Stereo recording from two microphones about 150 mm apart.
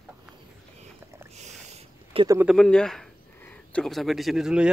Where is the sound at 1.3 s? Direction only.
50° right (ahead or behind).